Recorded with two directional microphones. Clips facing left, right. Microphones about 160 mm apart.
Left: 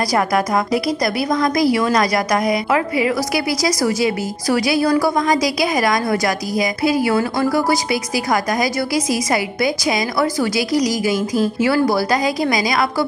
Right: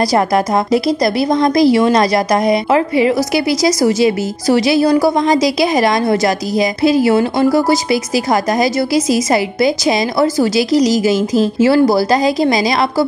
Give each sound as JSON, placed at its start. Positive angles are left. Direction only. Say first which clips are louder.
{"t": 0.1, "sound": "a woman's voice", "louder": "right 4 dB", "side_deg": -25}